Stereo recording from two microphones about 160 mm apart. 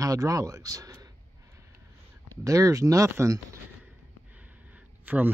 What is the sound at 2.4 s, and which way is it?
Speech, 20° right (ahead or behind).